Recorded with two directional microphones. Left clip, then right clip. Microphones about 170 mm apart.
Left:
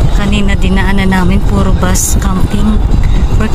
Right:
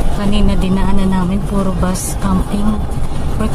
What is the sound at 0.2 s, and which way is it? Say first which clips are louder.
Speech: left 3 dB; centre (ahead or behind).